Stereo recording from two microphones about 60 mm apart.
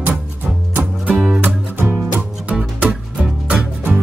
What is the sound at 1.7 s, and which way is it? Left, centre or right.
Music, right.